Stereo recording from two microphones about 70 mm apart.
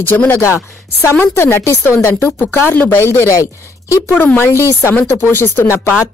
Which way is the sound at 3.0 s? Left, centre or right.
Left.